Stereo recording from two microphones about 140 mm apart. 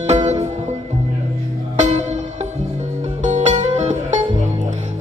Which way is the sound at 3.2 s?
55° right (ahead or behind).